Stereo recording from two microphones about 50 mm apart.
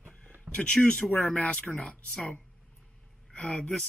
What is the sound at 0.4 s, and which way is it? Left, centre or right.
Speech, left.